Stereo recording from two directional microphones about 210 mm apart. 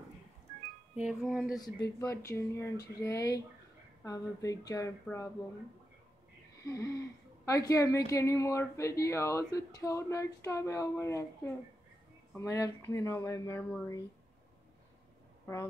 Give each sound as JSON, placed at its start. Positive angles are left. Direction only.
{"t": 1.0, "sound": "speech", "side_deg": 0}
{"t": 2.0, "sound": "speech", "side_deg": 15}
{"t": 6.6, "sound": "speech", "side_deg": 15}